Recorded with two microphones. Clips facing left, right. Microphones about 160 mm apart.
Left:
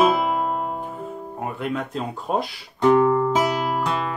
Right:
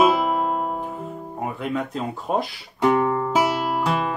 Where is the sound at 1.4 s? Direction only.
Centre (ahead or behind).